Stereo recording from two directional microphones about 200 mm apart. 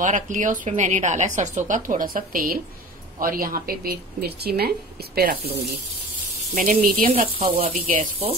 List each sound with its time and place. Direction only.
0.0 s a woman's voice: 40° right (ahead or behind)
6.5 s speech: 45° right (ahead or behind)
7.1 s a woman's voice: 30° right (ahead or behind)